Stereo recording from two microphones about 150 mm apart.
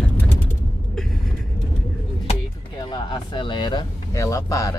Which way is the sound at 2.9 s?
35° left (ahead or behind).